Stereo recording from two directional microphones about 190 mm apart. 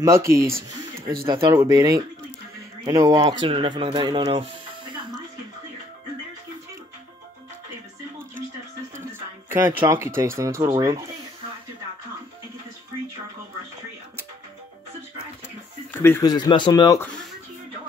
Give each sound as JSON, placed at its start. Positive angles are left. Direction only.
{"t": 0.0, "sound": "speech", "side_deg": -15}
{"t": 9.5, "sound": "speech", "side_deg": -10}
{"t": 15.9, "sound": "speech", "side_deg": 10}